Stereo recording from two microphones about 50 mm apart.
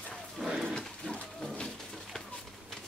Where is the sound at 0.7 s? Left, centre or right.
Centre.